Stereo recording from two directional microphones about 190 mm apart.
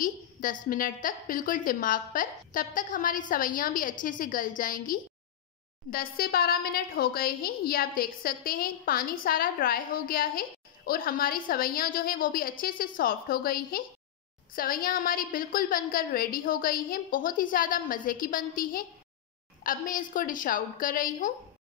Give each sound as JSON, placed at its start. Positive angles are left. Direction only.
{"t": 0.0, "sound": "a woman's voice", "side_deg": 45}